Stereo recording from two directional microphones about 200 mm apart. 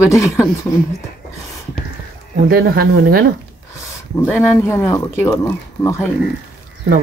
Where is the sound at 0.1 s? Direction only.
15° left (ahead or behind).